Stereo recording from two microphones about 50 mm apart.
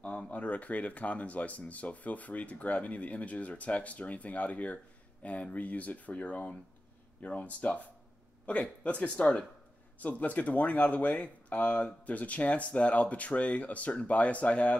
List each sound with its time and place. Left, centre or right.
0.0 s speech: left